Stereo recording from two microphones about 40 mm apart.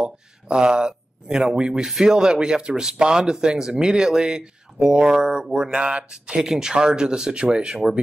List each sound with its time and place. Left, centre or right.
0.0 s speech: right
6.4 s speech: centre